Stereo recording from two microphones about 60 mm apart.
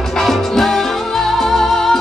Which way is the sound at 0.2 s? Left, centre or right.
Centre.